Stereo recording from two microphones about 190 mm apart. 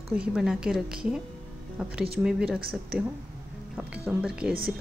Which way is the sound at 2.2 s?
5° right (ahead or behind).